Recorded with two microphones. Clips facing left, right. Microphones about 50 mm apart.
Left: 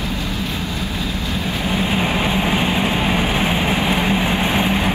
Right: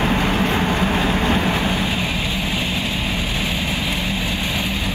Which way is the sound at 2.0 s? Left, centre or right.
Left.